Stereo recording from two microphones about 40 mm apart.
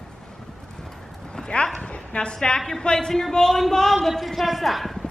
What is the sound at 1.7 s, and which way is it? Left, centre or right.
A woman's voice, left.